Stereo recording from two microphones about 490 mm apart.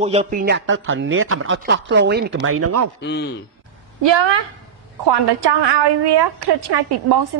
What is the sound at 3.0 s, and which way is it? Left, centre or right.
Speech, left.